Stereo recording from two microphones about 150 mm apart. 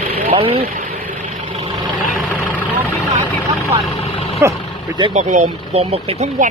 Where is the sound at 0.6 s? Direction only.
65° right (ahead or behind).